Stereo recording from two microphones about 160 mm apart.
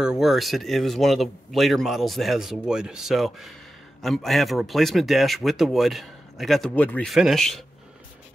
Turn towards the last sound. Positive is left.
turn(degrees=0)  # may be behind; listen again after turning